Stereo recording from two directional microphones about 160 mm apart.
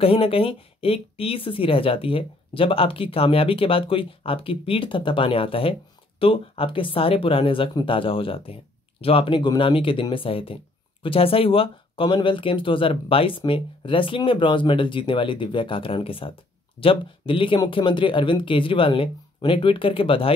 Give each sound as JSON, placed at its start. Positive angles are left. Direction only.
{"t": 0.0, "sound": "speech", "side_deg": 35}